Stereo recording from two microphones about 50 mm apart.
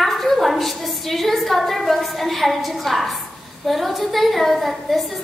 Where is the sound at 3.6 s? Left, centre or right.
Centre.